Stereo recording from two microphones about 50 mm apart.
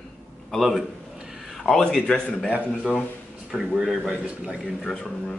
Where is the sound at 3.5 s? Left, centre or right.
Centre.